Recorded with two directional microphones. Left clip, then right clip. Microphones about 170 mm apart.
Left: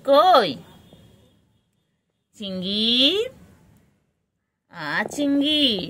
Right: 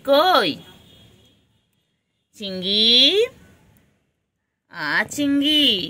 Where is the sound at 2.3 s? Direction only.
15° left (ahead or behind).